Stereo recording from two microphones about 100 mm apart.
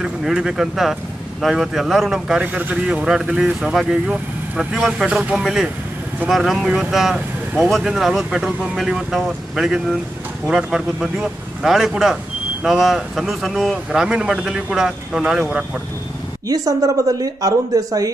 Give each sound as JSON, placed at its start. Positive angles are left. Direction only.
{"t": 0.0, "sound": "speech", "side_deg": -5}
{"t": 16.4, "sound": "speech", "side_deg": -40}